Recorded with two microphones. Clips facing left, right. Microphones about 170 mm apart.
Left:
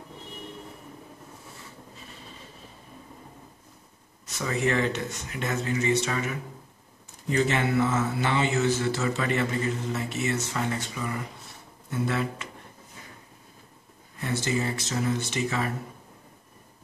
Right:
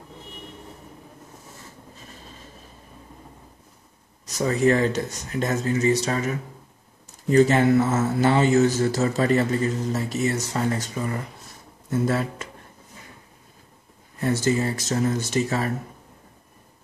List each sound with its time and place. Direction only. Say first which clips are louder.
4.3 s a man's voice: right 7 dB; 40° right (ahead or behind)
14.2 s a man's voice: right 6 dB; 40° right (ahead or behind)